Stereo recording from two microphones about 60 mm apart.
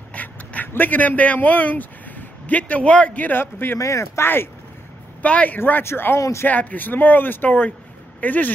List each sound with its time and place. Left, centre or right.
0.1 s speech: left
3.7 s speech: left
5.2 s speech: left
5.9 s speech: left
6.1 s speech: left
6.4 s speech: left